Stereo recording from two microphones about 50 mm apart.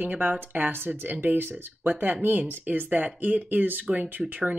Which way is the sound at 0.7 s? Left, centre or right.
Right.